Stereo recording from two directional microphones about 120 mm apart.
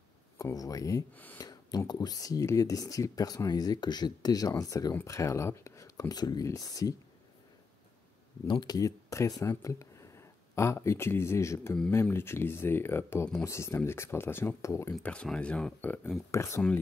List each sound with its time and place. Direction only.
0.4 s speech: 30° left (ahead or behind)
1.1 s speech: 15° left (ahead or behind)
1.4 s a sound: 35° left (ahead or behind)
1.9 s speech: 35° left (ahead or behind)
8.5 s speech: 35° left (ahead or behind)
15.0 s speech: 10° left (ahead or behind)
16.3 s speech: 25° left (ahead or behind)